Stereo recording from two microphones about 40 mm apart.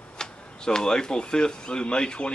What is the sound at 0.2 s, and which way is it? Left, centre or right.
Speech, centre.